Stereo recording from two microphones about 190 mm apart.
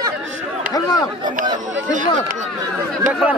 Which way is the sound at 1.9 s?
40° right (ahead or behind).